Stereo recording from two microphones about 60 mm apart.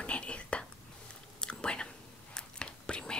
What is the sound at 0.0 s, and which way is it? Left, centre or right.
Whispering, centre.